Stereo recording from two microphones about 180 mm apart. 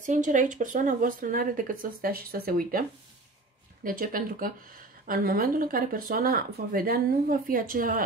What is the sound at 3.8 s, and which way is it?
Speech, 50° right (ahead or behind).